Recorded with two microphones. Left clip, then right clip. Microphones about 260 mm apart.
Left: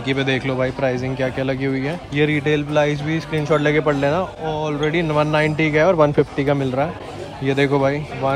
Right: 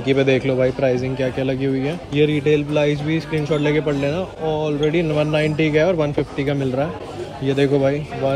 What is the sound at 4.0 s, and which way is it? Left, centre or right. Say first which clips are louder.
Speech: left 2 dB; left.